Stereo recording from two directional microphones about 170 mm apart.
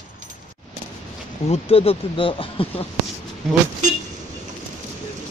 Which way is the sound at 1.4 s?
35° left (ahead or behind).